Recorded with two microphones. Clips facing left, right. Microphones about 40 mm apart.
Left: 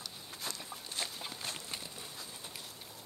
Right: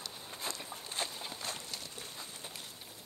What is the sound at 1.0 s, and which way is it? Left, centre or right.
Clip-clop, centre.